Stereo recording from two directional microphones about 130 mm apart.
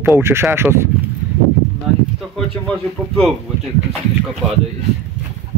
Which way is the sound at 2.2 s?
5° left (ahead or behind).